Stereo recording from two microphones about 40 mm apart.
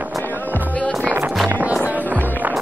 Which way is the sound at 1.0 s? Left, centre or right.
Right.